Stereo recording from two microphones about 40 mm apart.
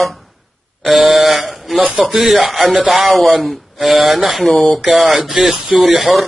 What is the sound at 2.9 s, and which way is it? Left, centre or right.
Speech, centre.